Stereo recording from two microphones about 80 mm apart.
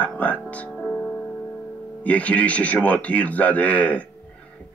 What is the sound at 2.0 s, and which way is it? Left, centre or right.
Speech, centre.